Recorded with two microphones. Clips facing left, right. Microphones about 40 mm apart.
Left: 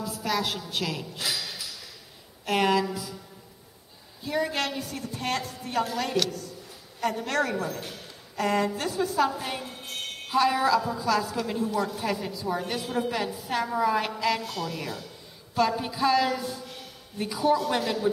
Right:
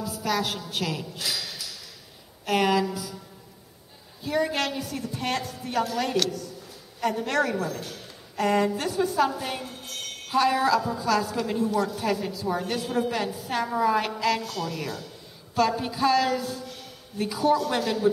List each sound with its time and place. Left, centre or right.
0.0 s a woman's voice: centre
4.2 s a woman's voice: centre
4.6 s a woman's voice: right
5.9 s a woman's voice: centre
7.4 s a woman's voice: centre
8.4 s a woman's voice: centre
8.7 s a woman's voice: right
9.2 s a woman's voice: centre
9.7 s a sound: left
10.3 s a woman's voice: centre
11.7 s a woman's voice: centre